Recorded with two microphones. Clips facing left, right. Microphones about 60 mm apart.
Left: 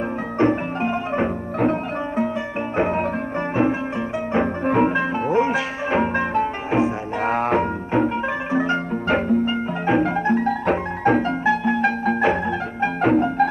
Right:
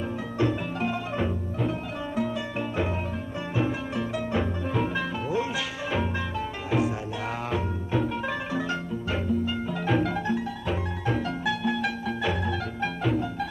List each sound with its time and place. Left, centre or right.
0.4 s music: left
4.6 s music: left
9.1 s music: left
9.8 s music: left